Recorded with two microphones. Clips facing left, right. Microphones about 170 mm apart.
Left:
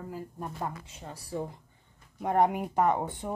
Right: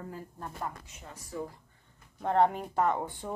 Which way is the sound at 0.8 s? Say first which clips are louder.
Left 4 dB; 30° left (ahead or behind).